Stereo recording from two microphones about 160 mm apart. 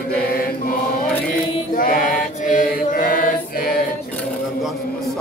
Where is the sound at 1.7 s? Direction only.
60° left (ahead or behind).